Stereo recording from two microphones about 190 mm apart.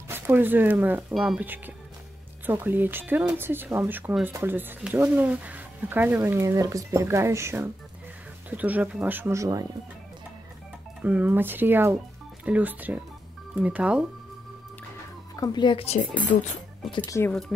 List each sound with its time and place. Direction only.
0.1 s speech: 10° right (ahead or behind)
11.0 s speech: 10° right (ahead or behind)
15.3 s speech: 20° left (ahead or behind); by 16.5 s 40° left (ahead or behind)
16.9 s speech: 25° left (ahead or behind)
17.2 s speech: 5° left (ahead or behind)